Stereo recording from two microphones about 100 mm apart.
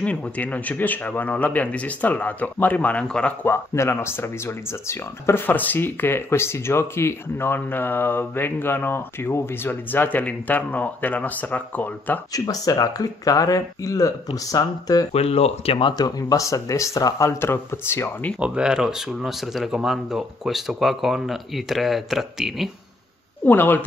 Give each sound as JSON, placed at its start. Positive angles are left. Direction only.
{"t": 0.0, "sound": "a man's voice", "side_deg": 15}
{"t": 3.4, "sound": "speech", "side_deg": 25}
{"t": 12.3, "sound": "speech", "side_deg": 40}
{"t": 15.1, "sound": "speech", "side_deg": 90}
{"t": 16.0, "sound": "speech", "side_deg": 40}
{"t": 18.4, "sound": "speech", "side_deg": -10}
{"t": 23.4, "sound": "speech", "side_deg": 20}